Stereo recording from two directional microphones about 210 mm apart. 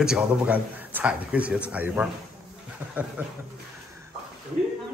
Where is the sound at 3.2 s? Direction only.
5° right (ahead or behind).